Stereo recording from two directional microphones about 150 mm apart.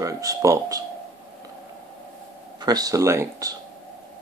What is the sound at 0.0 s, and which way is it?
Speech, 20° right (ahead or behind).